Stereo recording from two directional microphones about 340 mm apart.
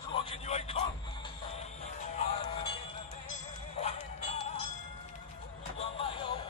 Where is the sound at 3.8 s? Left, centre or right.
Centre.